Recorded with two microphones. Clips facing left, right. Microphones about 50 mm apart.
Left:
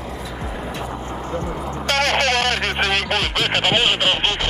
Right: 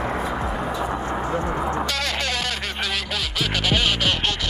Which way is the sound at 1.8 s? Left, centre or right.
Left.